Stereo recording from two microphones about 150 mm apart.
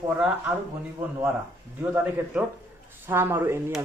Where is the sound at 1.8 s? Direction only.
10° right (ahead or behind).